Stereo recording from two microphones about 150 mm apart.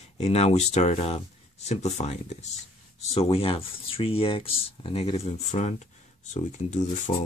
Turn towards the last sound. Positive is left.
turn(degrees=55)  # may be behind; listen again after turning